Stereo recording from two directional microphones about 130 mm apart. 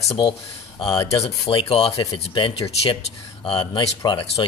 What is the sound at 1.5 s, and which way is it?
Speech, 45° left (ahead or behind).